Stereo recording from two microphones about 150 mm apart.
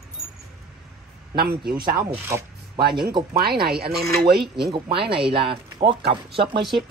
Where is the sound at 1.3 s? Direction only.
90° right.